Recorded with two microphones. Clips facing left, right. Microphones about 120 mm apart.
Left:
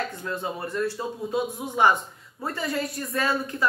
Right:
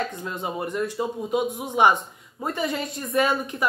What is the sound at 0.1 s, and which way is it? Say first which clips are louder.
A man's voice: right 1 dB; 20° right (ahead or behind).